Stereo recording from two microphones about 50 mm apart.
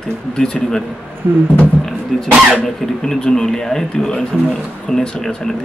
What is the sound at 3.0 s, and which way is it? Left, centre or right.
Speech, centre.